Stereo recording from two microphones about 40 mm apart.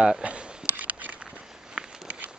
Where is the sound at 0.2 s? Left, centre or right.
Right.